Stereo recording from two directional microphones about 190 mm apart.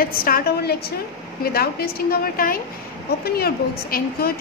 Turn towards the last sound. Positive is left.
turn(degrees=50)  # may be behind; listen again after turning